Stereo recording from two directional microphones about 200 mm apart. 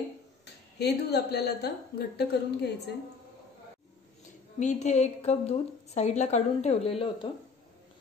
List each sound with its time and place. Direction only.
0.7 s a woman's voice: 55° left (ahead or behind)
4.6 s a woman's voice: 35° left (ahead or behind)